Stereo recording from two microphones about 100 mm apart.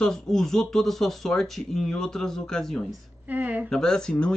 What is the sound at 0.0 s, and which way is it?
Speech, 5° left (ahead or behind).